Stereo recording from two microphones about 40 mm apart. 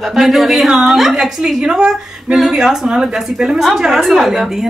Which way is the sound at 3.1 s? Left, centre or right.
Centre.